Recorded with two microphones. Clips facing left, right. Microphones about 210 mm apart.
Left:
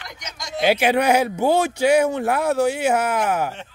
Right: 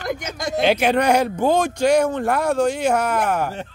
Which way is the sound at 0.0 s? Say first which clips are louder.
Right 12 dB; 55° right (ahead or behind).